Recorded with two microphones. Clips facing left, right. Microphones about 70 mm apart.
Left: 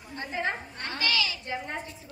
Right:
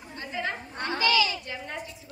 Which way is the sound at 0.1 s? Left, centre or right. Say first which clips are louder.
Left 1 dB; left.